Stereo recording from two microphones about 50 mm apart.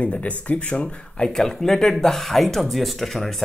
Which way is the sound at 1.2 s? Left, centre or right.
Centre.